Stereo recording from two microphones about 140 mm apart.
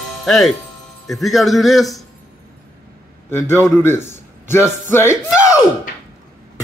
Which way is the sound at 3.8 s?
15° left (ahead or behind).